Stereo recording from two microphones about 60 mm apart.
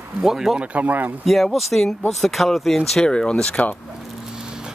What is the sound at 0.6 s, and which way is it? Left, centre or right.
Speech, right.